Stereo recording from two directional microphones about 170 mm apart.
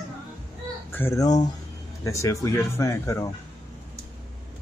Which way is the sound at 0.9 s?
15° left (ahead or behind).